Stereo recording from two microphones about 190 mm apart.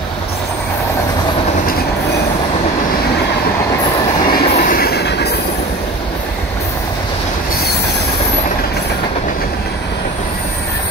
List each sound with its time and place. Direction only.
4.6 s train: 50° left (ahead or behind)